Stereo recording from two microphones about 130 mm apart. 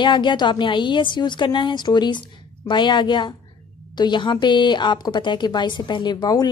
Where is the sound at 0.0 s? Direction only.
35° left (ahead or behind).